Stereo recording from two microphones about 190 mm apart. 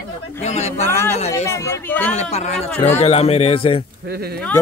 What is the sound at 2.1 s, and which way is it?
Speech, 35° left (ahead or behind).